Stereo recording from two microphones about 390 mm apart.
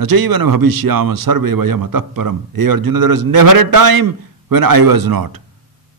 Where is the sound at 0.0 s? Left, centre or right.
Right.